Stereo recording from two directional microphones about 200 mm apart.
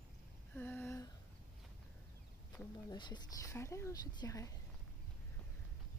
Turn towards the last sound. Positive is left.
turn(degrees=15)  # may be behind; listen again after turning